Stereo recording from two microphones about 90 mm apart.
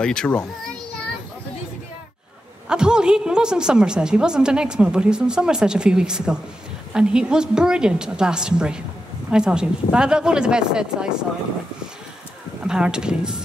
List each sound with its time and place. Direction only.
0.0 s a child's voice: 10° left (ahead or behind)
2.7 s a woman's voice: 10° right (ahead or behind)
12.6 s a woman's voice: 10° right (ahead or behind)